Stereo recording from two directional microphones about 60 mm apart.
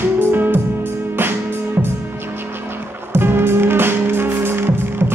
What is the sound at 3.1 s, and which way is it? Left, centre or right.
Music, right.